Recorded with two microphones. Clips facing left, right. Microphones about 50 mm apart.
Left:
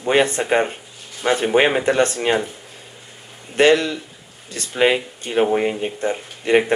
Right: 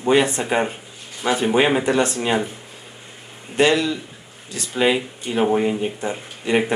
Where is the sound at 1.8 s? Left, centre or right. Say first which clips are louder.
Left 2 dB; left.